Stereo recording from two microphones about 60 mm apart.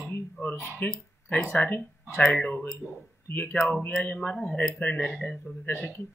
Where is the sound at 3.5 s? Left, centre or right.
Centre.